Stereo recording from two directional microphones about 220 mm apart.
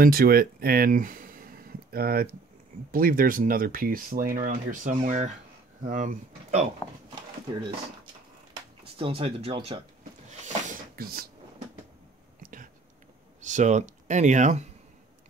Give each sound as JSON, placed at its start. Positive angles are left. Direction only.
{"t": 0.0, "sound": "speech", "side_deg": -40}
{"t": 8.9, "sound": "speech", "side_deg": -25}
{"t": 10.4, "sound": "a sound", "side_deg": -40}
{"t": 13.4, "sound": "speech", "side_deg": -35}